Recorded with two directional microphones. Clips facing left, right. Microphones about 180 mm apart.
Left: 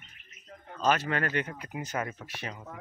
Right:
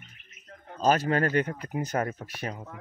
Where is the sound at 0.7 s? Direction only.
40° right (ahead or behind).